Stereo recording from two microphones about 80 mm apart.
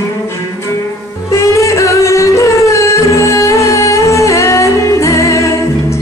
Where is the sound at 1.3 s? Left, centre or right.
Left.